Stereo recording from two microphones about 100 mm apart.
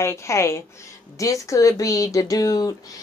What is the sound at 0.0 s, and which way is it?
A woman's voice, 30° left (ahead or behind).